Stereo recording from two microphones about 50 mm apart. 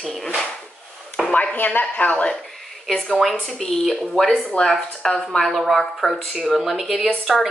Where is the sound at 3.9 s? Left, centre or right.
Left; by 7.4 s centre.